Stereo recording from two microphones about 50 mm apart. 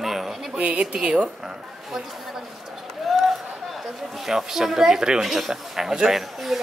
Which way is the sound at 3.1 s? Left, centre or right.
Centre.